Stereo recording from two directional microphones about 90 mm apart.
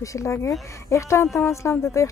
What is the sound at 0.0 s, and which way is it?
A woman's voice, 35° left (ahead or behind).